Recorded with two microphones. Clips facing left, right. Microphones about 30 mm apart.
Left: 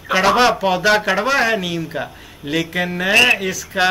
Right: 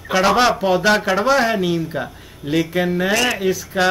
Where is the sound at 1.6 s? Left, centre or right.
Left.